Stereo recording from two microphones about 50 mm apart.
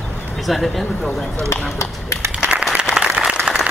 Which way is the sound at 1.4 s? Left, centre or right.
Left.